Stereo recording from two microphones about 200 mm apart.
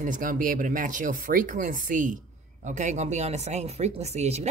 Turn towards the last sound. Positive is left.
turn(degrees=-30)  # may be behind; listen again after turning